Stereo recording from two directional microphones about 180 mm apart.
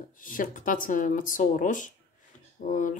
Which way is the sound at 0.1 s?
50° left (ahead or behind).